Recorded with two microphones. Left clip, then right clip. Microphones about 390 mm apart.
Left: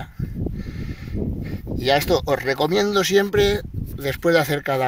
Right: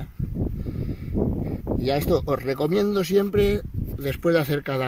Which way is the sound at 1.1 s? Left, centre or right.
Right.